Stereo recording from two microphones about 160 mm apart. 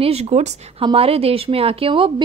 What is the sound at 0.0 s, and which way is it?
A woman's voice, 40° right (ahead or behind).